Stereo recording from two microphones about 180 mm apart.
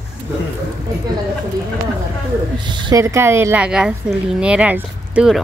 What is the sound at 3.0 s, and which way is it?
A woman's voice, 15° right (ahead or behind).